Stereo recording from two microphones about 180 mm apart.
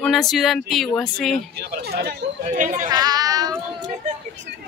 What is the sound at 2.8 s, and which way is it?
Speech, 20° right (ahead or behind).